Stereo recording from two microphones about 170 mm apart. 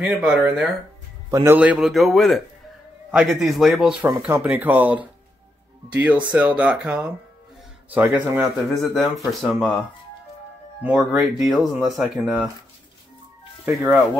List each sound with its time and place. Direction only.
0.0 s speech: 5° right (ahead or behind)
1.3 s a man's voice: 20° right (ahead or behind)
1.6 s speech: 5° right (ahead or behind)
8.6 s speech: centre (ahead or behind)
10.8 s speech: 5° right (ahead or behind)
13.7 s speech: 10° right (ahead or behind)